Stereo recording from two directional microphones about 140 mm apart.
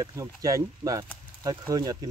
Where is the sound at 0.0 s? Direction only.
25° right (ahead or behind).